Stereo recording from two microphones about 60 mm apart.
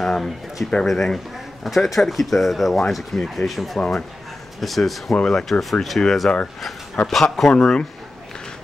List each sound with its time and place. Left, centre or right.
0.0 s speech: centre
7.5 s speech: centre